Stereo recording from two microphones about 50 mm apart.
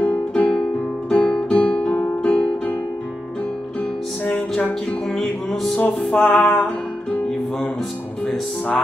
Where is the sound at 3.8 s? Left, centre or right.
Left.